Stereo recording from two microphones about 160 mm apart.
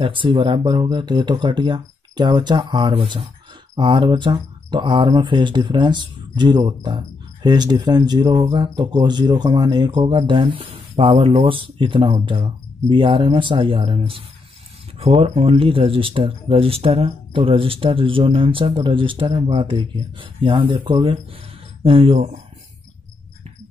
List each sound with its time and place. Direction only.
0.0 s speech: 30° right (ahead or behind)